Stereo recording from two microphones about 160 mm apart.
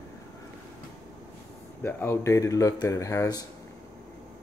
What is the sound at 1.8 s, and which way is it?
Speech, 15° left (ahead or behind).